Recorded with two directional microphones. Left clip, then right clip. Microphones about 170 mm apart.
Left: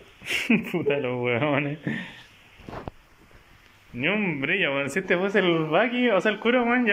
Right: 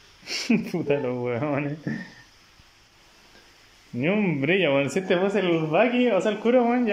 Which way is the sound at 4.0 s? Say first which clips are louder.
Even; 25° right (ahead or behind).